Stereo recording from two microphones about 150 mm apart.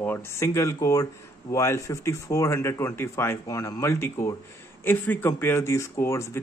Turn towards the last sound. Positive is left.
turn(degrees=20)  # may be behind; listen again after turning